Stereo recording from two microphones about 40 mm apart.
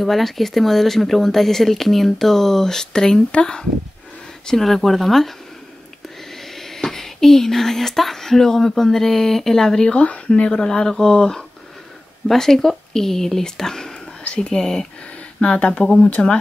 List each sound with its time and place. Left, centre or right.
0.0 s speech: centre; by 3.6 s left
4.5 s speech: centre
9.9 s speech: left
10.5 s speech: centre
15.4 s speech: left
15.8 s speech: centre